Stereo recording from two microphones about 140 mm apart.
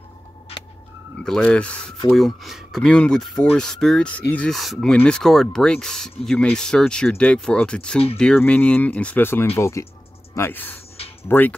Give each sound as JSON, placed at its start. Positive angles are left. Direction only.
{"t": 1.2, "sound": "speech", "side_deg": 5}